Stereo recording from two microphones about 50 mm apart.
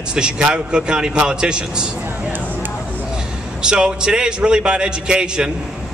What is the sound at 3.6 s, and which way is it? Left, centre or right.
A man's voice, centre.